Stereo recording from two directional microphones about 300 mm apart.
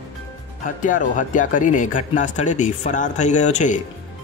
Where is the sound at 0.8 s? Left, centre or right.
Left.